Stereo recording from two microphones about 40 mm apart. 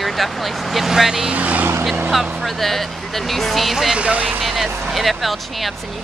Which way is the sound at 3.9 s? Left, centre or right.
Right.